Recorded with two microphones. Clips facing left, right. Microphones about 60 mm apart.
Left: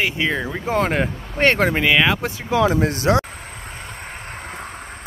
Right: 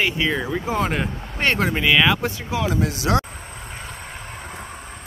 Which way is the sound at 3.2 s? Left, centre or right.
Left.